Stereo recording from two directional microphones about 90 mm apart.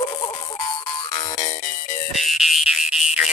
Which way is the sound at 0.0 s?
55° left (ahead or behind).